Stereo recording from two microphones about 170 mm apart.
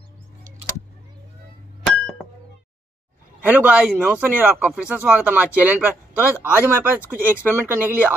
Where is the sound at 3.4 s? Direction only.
10° right (ahead or behind).